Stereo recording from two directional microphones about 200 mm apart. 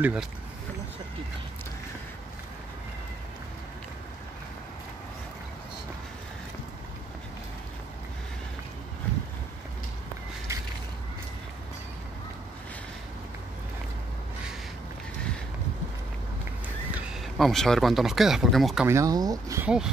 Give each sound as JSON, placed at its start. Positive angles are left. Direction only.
{"t": 0.0, "sound": "speech", "side_deg": -5}
{"t": 10.5, "sound": "a sound", "side_deg": -15}
{"t": 16.9, "sound": "speech", "side_deg": 0}
{"t": 18.9, "sound": "speech", "side_deg": -15}